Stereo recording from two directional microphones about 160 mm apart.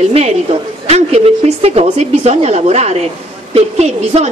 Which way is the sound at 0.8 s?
40° right (ahead or behind).